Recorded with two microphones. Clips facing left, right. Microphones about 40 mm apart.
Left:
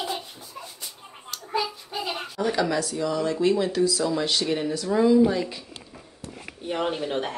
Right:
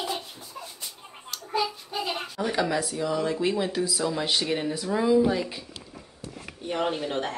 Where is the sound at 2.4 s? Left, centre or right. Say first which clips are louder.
Left 2 dB; centre.